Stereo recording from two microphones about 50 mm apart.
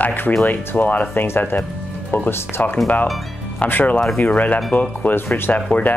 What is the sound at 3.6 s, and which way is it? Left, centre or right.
Speech, left.